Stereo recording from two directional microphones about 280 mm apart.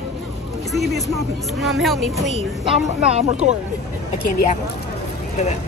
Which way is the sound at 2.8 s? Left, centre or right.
Right.